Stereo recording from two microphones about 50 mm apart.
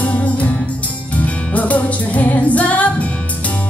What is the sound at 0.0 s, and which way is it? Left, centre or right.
Music, left.